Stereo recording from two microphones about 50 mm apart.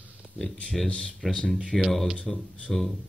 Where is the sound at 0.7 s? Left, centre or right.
Centre.